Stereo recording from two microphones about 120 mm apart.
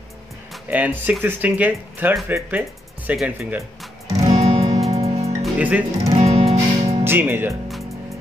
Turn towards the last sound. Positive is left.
turn(degrees=-20)  # may be behind; listen again after turning